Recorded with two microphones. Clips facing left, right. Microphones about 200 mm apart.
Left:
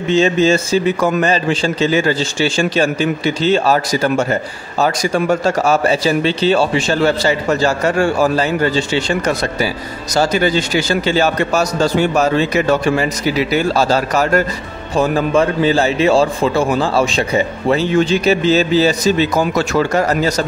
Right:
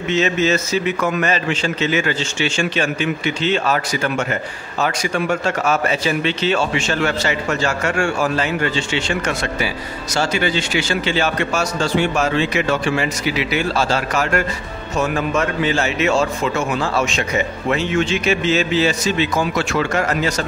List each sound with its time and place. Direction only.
0.1 s a man's voice: 30° left (ahead or behind)